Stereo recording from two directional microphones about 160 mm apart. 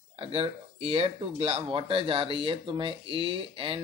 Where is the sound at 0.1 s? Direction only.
35° right (ahead or behind).